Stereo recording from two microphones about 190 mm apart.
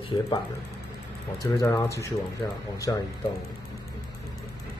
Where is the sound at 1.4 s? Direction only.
20° left (ahead or behind).